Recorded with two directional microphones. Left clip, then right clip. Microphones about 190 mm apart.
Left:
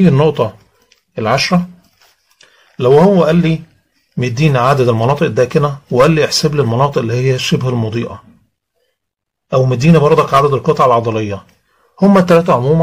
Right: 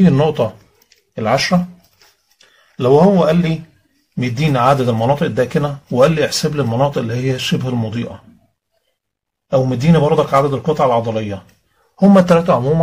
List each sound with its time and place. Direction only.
0.0 s speech: 35° left (ahead or behind)
9.5 s a man's voice: 45° left (ahead or behind); by 12.7 s 30° left (ahead or behind)